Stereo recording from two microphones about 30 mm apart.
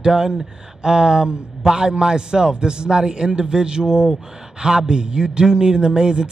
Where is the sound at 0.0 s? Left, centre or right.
Right.